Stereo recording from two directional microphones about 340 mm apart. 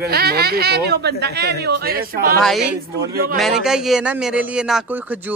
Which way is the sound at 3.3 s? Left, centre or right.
Centre.